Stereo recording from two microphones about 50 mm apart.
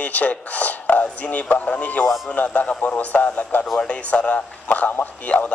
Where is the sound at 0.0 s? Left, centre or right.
Left.